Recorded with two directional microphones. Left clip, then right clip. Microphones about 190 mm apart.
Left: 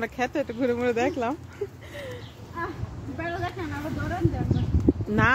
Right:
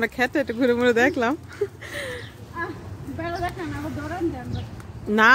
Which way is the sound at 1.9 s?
25° right (ahead or behind).